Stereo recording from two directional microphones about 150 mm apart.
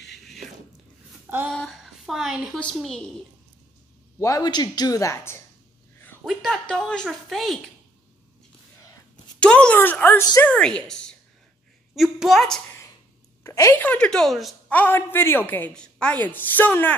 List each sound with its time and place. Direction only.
1.5 s a woman's voice: centre (ahead or behind)
4.2 s speech: 25° left (ahead or behind)
6.2 s a woman's voice: centre (ahead or behind)
9.4 s a woman's voice: 5° left (ahead or behind)
13.4 s a woman's voice: 20° left (ahead or behind)